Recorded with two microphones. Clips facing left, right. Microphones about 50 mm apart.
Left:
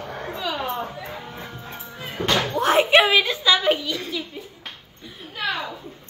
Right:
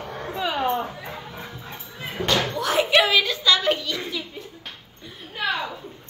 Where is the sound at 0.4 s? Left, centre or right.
Right.